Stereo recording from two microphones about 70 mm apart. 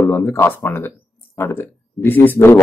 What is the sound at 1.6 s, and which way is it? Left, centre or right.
Speech, left.